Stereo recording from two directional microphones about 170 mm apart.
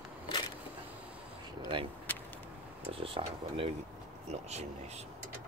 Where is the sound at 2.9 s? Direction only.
35° right (ahead or behind).